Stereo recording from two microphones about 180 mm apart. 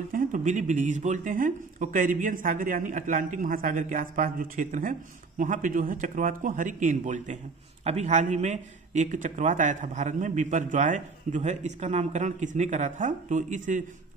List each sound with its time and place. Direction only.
0.1 s a man's voice: 45° right (ahead or behind)